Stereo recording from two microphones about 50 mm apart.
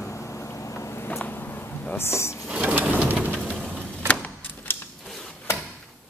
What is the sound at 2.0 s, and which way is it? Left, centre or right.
Speech, left.